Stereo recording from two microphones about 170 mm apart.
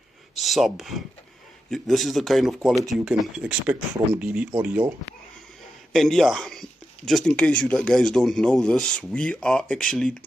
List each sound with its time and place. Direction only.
0.4 s speech: centre (ahead or behind)
5.9 s speech: centre (ahead or behind)